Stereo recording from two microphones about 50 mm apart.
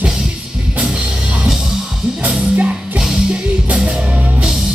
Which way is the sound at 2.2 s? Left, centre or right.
Right.